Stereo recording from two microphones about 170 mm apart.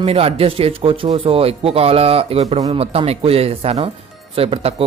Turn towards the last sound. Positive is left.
turn(degrees=-35)  # may be behind; listen again after turning